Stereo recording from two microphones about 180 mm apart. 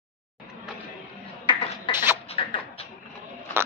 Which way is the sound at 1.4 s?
25° left (ahead or behind).